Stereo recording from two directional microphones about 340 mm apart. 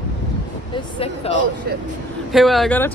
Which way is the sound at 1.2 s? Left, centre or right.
Centre.